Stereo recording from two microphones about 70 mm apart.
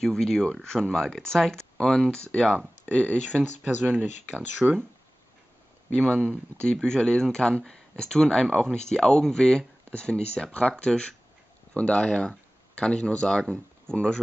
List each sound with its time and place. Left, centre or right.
0.0 s speech: centre
3.6 s speech: right
4.6 s speech: centre
6.6 s speech: centre